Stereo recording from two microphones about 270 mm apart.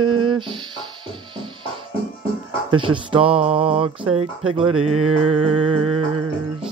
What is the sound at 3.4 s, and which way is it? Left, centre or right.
Mantra, right.